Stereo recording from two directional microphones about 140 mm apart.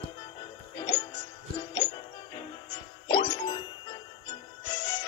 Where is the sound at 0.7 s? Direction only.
30° left (ahead or behind).